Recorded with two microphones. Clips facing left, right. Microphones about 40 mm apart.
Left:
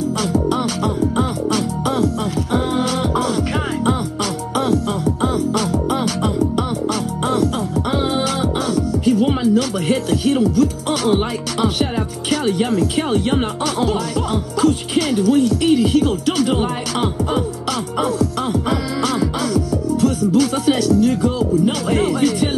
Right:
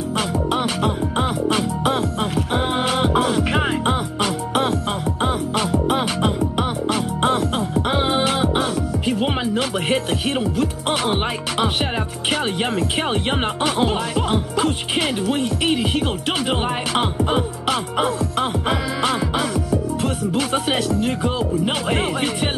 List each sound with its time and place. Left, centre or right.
0.3 s music: right
11.6 s speech: right
18.0 s music: right